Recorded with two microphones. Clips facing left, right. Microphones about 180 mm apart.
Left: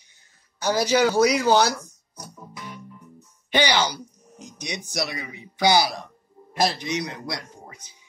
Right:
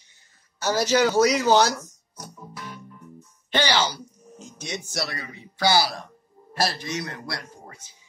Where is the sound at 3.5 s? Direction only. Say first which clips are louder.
Left 2 dB; 15° left (ahead or behind).